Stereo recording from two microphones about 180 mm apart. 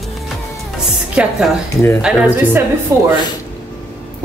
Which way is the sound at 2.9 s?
15° right (ahead or behind).